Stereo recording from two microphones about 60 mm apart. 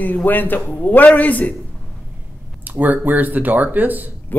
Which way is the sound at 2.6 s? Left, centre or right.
Right.